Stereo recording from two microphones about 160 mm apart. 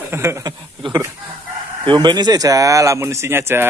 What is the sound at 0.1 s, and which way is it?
Speech, 15° right (ahead or behind).